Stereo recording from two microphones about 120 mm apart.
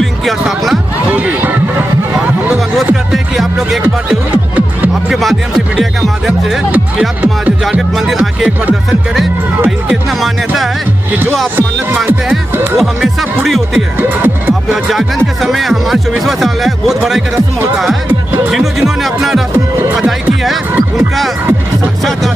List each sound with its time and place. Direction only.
0.0 s music: centre (ahead or behind)
1.1 s a sound: 15° right (ahead or behind)
2.1 s music: 10° right (ahead or behind)
3.8 s music: 15° right (ahead or behind)
5.1 s music: centre (ahead or behind)
6.7 s speech: 15° right (ahead or behind)
8.1 s speech: 5° right (ahead or behind)
9.7 s music: centre (ahead or behind)
12.1 s music: 15° right (ahead or behind)
12.7 s music: centre (ahead or behind)
13.9 s music: 15° right (ahead or behind)
14.7 s speech: centre (ahead or behind)
18.8 s speech: centre (ahead or behind)
20.0 s music: centre (ahead or behind)